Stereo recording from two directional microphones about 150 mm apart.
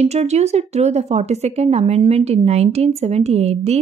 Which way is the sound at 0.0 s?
45° right (ahead or behind).